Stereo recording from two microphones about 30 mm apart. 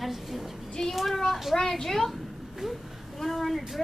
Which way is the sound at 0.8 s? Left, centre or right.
Centre.